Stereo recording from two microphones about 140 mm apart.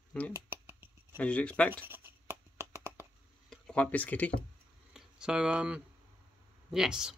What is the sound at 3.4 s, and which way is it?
Speech, 10° left (ahead or behind).